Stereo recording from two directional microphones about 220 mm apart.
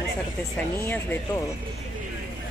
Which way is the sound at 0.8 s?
10° left (ahead or behind).